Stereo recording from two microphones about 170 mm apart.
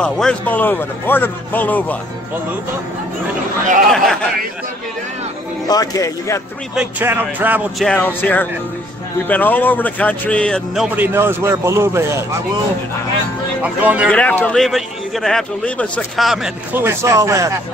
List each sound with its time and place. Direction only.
0.0 s a man's voice: 5° left (ahead or behind)
3.9 s a man's voice: centre (ahead or behind)
5.7 s speech: 20° left (ahead or behind)
6.7 s speech: 10° right (ahead or behind)
7.8 s a man's voice: 10° left (ahead or behind)
11.1 s speech: 15° right (ahead or behind)
13.6 s speech: 10° right (ahead or behind)
14.0 s a man's voice: 5° left (ahead or behind)
16.7 s speech: 15° right (ahead or behind)